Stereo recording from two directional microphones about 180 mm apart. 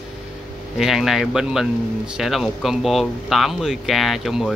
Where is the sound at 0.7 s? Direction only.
Centre (ahead or behind).